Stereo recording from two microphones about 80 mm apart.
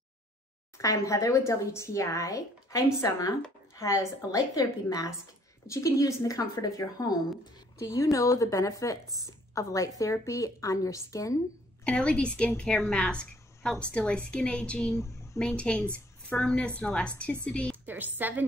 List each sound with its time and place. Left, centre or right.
0.7 s speech: left
7.8 s speech: left
11.8 s a woman's voice: centre
17.8 s a woman's voice: right